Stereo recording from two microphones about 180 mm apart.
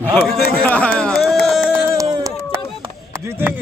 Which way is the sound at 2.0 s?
20° right (ahead or behind).